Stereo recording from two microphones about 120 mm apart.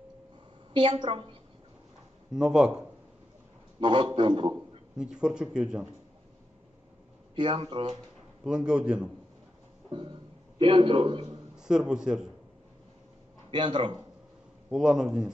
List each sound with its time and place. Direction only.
0.7 s a man's voice: 40° right (ahead or behind)
2.3 s speech: 5° right (ahead or behind)
3.8 s a man's voice: 45° right (ahead or behind)
4.9 s speech: 5° right (ahead or behind)
7.3 s a man's voice: 45° right (ahead or behind)
8.5 s speech: 5° right (ahead or behind)
9.8 s music: 45° right (ahead or behind)
10.6 s a man's voice: 45° right (ahead or behind)
11.5 s a man's voice: 5° right (ahead or behind)
13.5 s speech: 40° right (ahead or behind)
14.7 s speech: 5° right (ahead or behind)